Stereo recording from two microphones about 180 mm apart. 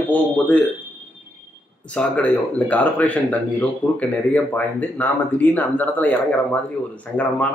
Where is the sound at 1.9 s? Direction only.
5° left (ahead or behind).